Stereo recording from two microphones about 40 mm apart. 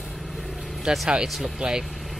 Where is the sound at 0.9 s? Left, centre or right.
Right.